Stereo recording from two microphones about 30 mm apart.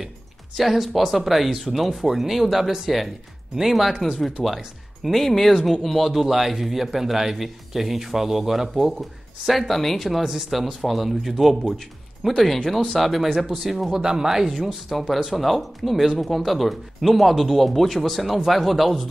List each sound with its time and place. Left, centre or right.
0.6 s speech: centre
3.7 s speech: centre
5.2 s speech: centre
6.2 s speech: centre
9.5 s speech: centre
10.0 s speech: centre
14.0 s speech: centre
14.9 s speech: centre